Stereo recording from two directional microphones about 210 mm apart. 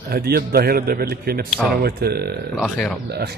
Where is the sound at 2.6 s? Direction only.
Centre (ahead or behind).